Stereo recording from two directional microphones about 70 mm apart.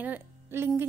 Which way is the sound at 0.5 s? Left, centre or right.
Right.